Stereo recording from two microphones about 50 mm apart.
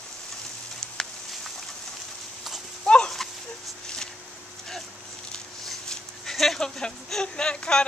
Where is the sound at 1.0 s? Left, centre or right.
Centre.